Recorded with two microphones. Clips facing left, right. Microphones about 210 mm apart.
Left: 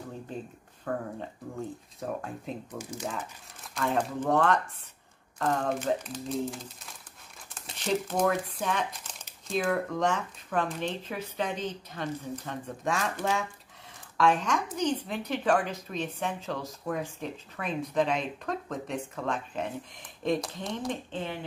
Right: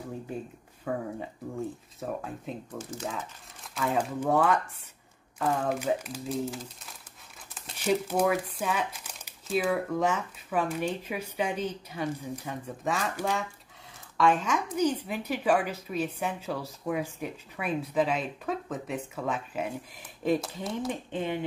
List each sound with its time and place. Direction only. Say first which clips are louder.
0.9 s a woman's voice: right 1 dB; 10° right (ahead or behind)